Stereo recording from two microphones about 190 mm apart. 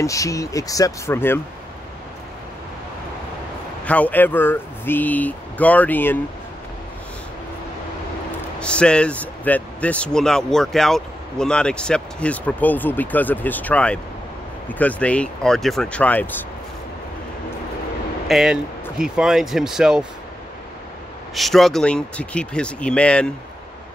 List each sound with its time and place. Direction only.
0.0 s speech: 15° left (ahead or behind)
3.8 s speech: 5° left (ahead or behind)
8.5 s speech: 5° left (ahead or behind)
18.3 s speech: centre (ahead or behind)
21.4 s speech: centre (ahead or behind)